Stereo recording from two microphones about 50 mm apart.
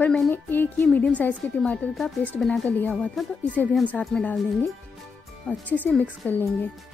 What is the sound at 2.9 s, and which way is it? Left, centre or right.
Speech, centre.